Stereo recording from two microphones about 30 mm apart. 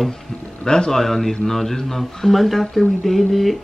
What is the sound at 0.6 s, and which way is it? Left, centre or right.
Speech, left.